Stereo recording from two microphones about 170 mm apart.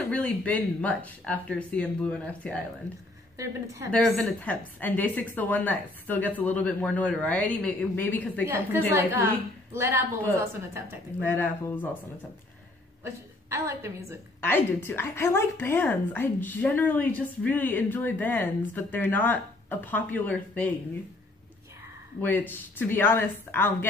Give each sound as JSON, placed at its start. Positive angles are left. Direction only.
{"t": 0.1, "sound": "a woman's voice", "side_deg": 10}
{"t": 3.9, "sound": "a woman's voice", "side_deg": 10}
{"t": 8.5, "sound": "a woman's voice", "side_deg": -10}
{"t": 11.1, "sound": "a woman's voice", "side_deg": 10}
{"t": 13.0, "sound": "a woman's voice", "side_deg": -15}
{"t": 14.4, "sound": "a woman's voice", "side_deg": 10}
{"t": 22.2, "sound": "a woman's voice", "side_deg": 10}